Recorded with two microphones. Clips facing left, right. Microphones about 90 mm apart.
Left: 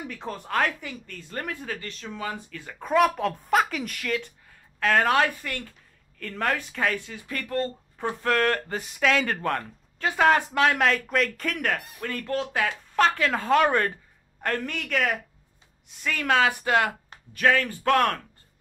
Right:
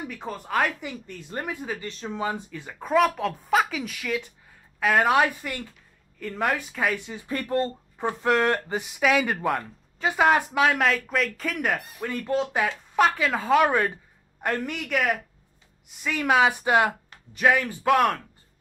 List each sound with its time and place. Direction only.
0.1 s speech: 5° right (ahead or behind)
1.9 s speech: 25° right (ahead or behind)
2.7 s speech: 5° right (ahead or behind)
7.1 s speech: 25° right (ahead or behind); by 18.2 s 5° right (ahead or behind)